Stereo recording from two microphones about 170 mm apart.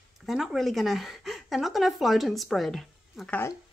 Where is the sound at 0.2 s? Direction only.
Centre (ahead or behind).